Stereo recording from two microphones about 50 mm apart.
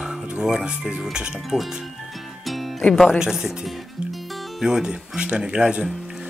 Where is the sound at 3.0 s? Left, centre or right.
Centre.